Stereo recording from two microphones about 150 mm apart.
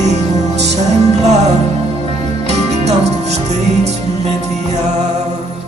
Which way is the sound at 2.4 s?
45° right (ahead or behind).